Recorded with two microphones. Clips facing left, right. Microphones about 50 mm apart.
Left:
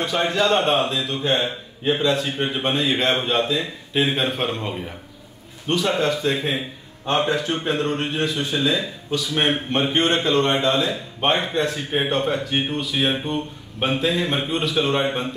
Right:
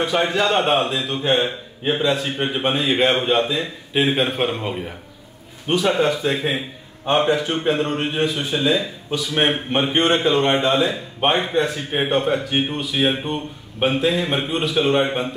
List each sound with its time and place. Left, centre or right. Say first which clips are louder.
0.2 s a man's voice: left 3 dB; centre
9.5 s a man's voice: right 1 dB; centre